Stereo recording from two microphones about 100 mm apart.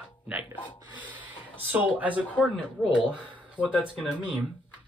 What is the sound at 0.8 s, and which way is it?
Rub, 15° right (ahead or behind).